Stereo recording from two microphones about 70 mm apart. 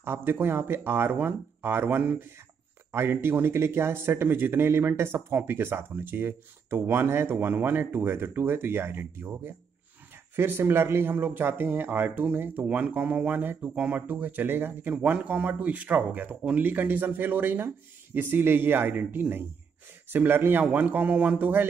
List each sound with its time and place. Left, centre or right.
0.0 s speech: right